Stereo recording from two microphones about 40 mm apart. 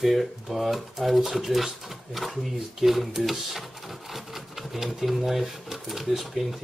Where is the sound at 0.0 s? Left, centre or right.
Centre.